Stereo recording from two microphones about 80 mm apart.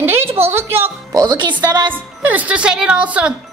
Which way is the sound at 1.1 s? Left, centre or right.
Right.